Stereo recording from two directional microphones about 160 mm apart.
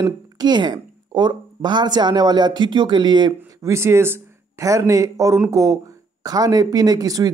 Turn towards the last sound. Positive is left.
turn(degrees=-20)  # may be behind; listen again after turning